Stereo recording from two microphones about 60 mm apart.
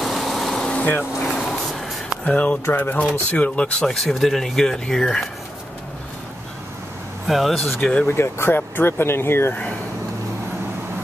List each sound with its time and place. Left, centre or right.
0.0 s a sound: centre
0.7 s vehicle: left
1.2 s vehicle: centre
2.2 s speech: left; by 5.3 s centre
7.2 s speech: centre
8.1 s speech: left